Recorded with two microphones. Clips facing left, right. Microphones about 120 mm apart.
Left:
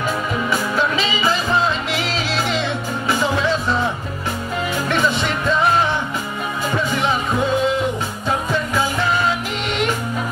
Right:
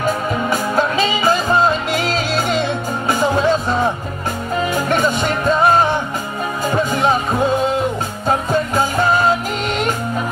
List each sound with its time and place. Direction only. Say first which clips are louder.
0.5 s music: right 3 dB; 45° right (ahead or behind)
8.3 s music: right 4 dB; 45° right (ahead or behind)